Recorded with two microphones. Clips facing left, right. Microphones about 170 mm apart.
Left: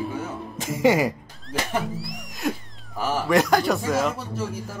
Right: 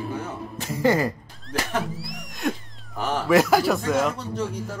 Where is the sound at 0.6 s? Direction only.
15° left (ahead or behind).